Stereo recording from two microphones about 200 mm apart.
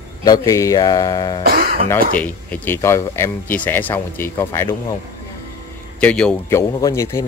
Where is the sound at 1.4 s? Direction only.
45° right (ahead or behind).